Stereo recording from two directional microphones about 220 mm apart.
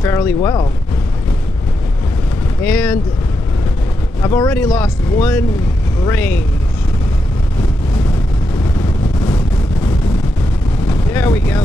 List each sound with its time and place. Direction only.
0.0 s speech: 10° left (ahead or behind)
0.4 s speech: 20° left (ahead or behind)
2.6 s speech: 5° left (ahead or behind)
4.2 s speech: 15° left (ahead or behind)
10.9 s a sound: 10° left (ahead or behind)